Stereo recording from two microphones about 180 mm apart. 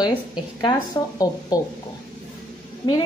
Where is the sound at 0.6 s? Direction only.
20° left (ahead or behind).